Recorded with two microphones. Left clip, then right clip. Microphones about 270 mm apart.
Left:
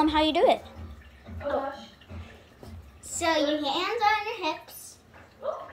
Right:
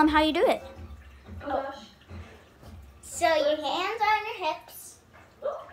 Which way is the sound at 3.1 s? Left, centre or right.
Centre.